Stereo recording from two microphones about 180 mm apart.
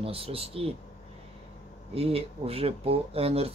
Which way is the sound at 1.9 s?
35° right (ahead or behind).